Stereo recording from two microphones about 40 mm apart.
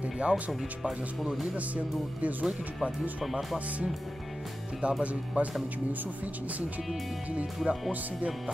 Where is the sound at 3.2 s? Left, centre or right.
Centre.